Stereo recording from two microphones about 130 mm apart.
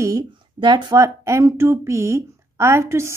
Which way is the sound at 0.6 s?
35° right (ahead or behind).